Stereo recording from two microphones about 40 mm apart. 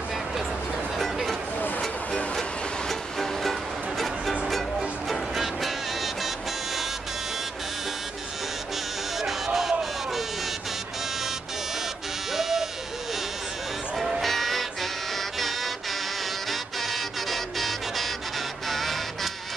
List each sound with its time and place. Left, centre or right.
0.9 s music: centre
2.9 s music: centre
9.2 s a sound: centre
12.4 s sheep: centre
13.9 s music: centre
14.2 s music: centre